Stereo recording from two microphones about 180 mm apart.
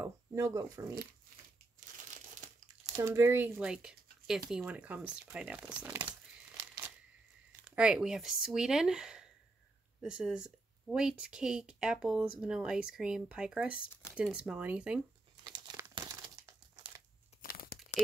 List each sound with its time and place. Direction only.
0.0 s speech: 15° right (ahead or behind)
2.9 s speech: 15° right (ahead or behind)
7.6 s speech: 5° right (ahead or behind)
15.6 s crumpling: 20° right (ahead or behind)
17.4 s a sound: 55° left (ahead or behind)